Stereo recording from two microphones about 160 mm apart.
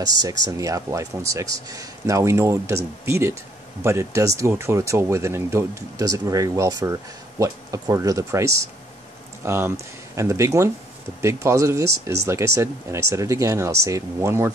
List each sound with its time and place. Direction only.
0.0 s speech: 25° right (ahead or behind)